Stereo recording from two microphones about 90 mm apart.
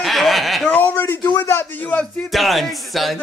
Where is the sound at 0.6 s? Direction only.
20° left (ahead or behind).